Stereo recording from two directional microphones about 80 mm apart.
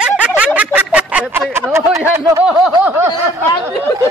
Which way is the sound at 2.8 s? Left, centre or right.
Right.